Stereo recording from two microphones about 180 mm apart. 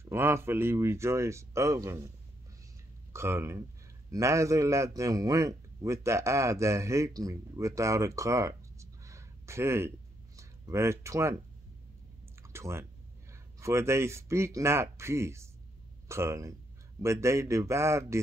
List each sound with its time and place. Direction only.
0.0 s a man's voice: 15° right (ahead or behind)
12.5 s a sound: 15° right (ahead or behind)
13.3 s speech: 15° right (ahead or behind)